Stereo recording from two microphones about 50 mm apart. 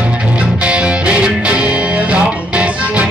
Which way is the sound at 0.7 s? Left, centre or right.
Right.